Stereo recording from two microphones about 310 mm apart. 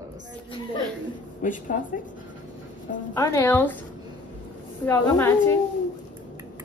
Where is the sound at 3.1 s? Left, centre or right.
Centre.